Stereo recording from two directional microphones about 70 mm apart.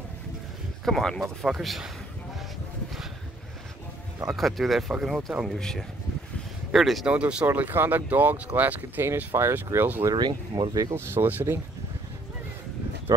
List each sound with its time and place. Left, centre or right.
0.8 s speech: centre
4.4 s speech: centre
5.5 s speech: centre
7.1 s speech: centre
7.4 s speech: right
9.0 s speech: right
10.1 s speech: right
11.0 s speech: right